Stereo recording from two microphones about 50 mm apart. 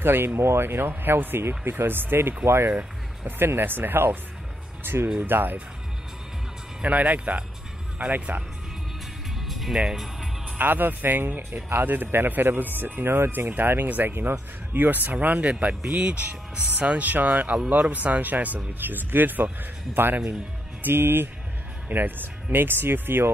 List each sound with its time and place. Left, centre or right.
0.0 s speech: right
2.7 s speech: right
3.3 s speech: right
6.8 s speech: right
9.4 s music: centre
9.8 s speech: centre
10.6 s speech: right
13.8 s speech: right
14.1 s speech: right